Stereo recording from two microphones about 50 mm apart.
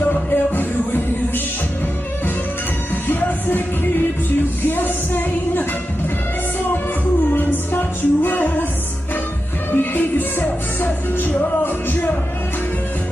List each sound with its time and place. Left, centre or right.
0.0 s music: left
3.1 s music: left
7.3 s music: left
9.7 s music: left